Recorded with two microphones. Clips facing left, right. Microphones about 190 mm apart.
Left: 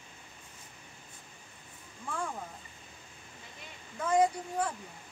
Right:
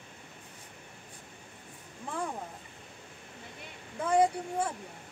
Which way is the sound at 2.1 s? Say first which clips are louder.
Right 1 dB; 15° right (ahead or behind).